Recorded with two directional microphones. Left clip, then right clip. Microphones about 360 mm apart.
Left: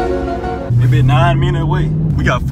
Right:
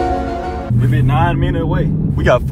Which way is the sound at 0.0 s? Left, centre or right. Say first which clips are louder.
Even; centre.